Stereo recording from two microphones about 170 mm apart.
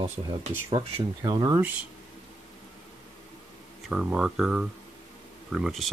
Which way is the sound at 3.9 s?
5° right (ahead or behind).